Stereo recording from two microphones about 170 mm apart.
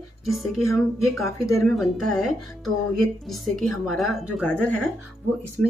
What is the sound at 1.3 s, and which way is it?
Speech, 15° left (ahead or behind).